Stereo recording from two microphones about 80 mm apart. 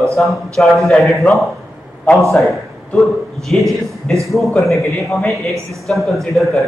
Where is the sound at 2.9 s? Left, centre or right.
Centre.